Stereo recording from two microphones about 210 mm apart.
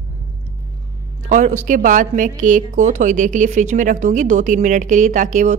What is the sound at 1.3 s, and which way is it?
A woman's voice, 35° right (ahead or behind).